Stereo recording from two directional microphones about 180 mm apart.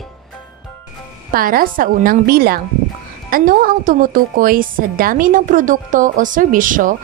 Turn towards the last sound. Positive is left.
turn(degrees=-50)  # may be behind; listen again after turning